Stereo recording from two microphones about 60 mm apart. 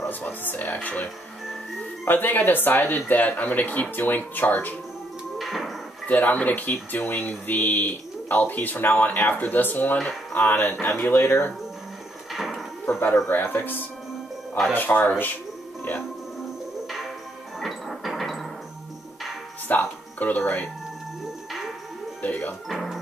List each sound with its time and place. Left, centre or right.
0.4 s music: left
0.7 s speech: left
2.0 s speech: left
5.4 s a sound: centre
6.0 s speech: left
12.3 s a sound: centre
13.3 s speech: left
17.6 s music: centre
19.7 s speech: left
21.5 s music: centre
22.2 s speech: left
22.7 s speech: centre